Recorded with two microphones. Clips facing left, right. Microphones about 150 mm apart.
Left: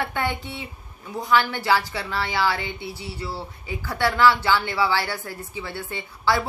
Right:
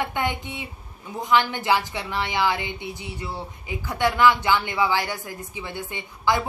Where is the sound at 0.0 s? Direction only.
20° right (ahead or behind).